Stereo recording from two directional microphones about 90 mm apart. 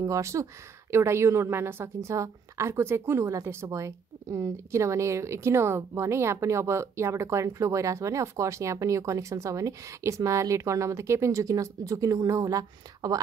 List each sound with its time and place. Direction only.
0.0 s a woman's voice: 35° right (ahead or behind)